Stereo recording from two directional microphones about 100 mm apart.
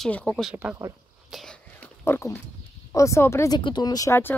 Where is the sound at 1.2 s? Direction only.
Centre (ahead or behind).